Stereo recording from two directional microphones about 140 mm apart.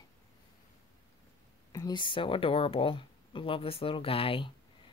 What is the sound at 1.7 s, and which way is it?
Speech, 25° left (ahead or behind).